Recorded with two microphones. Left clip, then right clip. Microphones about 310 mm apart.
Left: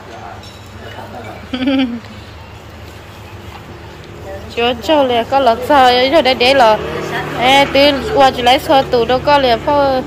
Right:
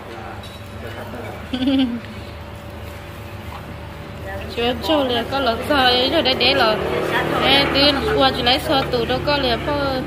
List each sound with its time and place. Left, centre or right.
1.5 s speech: left
4.6 s speech: centre